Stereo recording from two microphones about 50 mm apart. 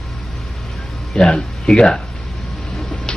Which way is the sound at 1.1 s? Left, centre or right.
Centre.